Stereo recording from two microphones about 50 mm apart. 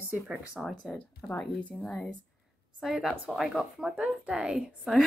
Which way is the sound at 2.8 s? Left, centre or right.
Centre.